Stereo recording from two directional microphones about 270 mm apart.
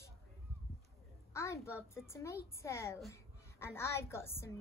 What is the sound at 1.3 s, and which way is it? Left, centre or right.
A child's voice, centre.